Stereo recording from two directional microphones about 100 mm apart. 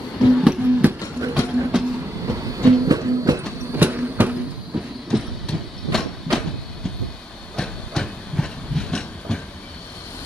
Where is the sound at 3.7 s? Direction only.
20° right (ahead or behind).